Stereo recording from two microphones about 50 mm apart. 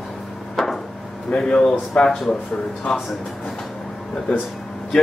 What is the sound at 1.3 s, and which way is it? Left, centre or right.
Speech, centre.